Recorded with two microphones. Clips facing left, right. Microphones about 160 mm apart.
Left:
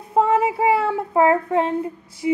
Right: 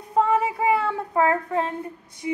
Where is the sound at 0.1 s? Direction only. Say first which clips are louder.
Left 3 dB; 25° left (ahead or behind).